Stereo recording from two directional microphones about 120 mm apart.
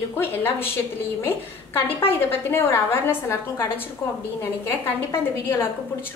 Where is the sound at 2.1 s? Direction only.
20° left (ahead or behind).